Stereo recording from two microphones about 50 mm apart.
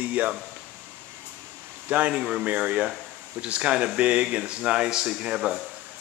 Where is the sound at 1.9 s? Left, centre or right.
Right.